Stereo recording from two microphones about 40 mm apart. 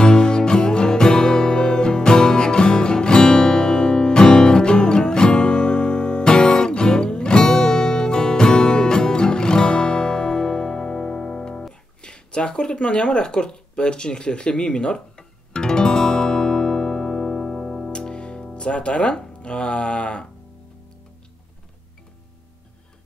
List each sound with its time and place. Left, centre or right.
0.0 s music: centre
12.0 s a sound: left; by 17.9 s centre
17.9 s music: left
18.7 s speech: left